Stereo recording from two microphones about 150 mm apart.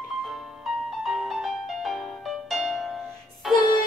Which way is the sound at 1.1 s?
Centre (ahead or behind).